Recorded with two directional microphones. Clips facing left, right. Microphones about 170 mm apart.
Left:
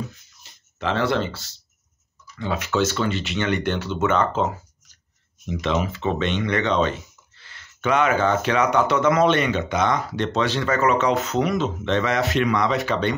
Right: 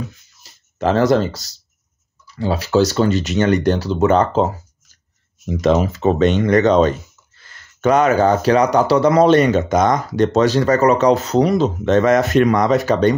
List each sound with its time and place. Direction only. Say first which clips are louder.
0.4 s speech: right 9 dB; 40° right (ahead or behind)